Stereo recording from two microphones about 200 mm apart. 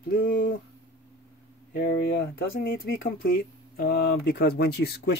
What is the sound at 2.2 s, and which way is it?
Speech, 50° left (ahead or behind).